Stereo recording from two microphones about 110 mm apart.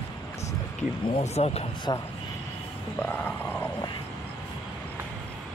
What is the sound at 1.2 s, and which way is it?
Speech, 70° left (ahead or behind).